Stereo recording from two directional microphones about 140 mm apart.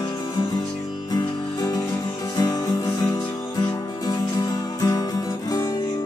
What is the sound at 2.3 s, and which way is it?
Music, 25° left (ahead or behind).